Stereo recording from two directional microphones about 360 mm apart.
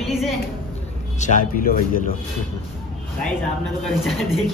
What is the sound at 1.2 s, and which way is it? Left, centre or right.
Speech, left.